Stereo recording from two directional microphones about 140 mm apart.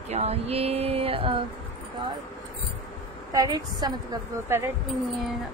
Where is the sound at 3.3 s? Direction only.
30° right (ahead or behind).